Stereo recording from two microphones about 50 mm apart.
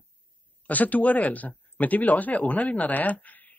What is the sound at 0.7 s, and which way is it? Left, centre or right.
Speech, left.